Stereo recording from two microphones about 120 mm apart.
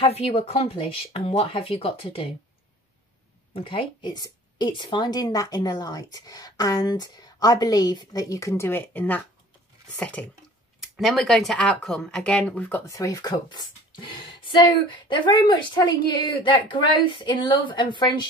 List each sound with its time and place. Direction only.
0.0 s speech: 60° left (ahead or behind)
3.5 s speech: 45° left (ahead or behind); by 12.9 s 15° left (ahead or behind)
12.9 s speech: 30° left (ahead or behind)